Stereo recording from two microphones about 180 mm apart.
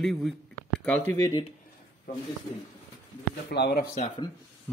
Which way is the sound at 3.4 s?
60° left (ahead or behind).